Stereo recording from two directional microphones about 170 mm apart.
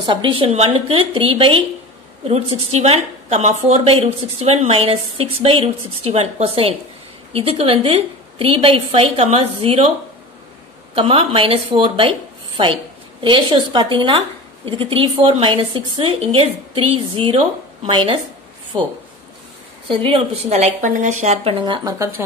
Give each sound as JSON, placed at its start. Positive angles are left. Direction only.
{"t": 0.0, "sound": "a woman's voice", "side_deg": -30}
{"t": 11.0, "sound": "a woman's voice", "side_deg": -35}
{"t": 13.2, "sound": "a woman's voice", "side_deg": -30}
{"t": 19.9, "sound": "a woman's voice", "side_deg": -30}
{"t": 21.5, "sound": "speech", "side_deg": -25}